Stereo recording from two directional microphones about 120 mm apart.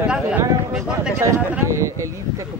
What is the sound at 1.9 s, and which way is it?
Speech, 25° right (ahead or behind).